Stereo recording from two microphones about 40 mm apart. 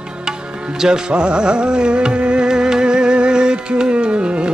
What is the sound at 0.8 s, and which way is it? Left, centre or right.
Music, right.